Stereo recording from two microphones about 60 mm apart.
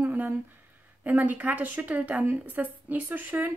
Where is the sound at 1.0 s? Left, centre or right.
Right.